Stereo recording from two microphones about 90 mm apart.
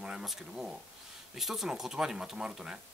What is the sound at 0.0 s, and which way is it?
Speech, 5° right (ahead or behind).